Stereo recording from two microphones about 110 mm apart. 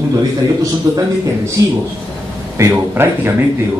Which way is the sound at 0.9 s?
35° right (ahead or behind).